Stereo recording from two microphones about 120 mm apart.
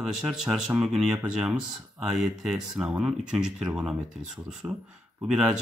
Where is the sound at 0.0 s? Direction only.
5° right (ahead or behind).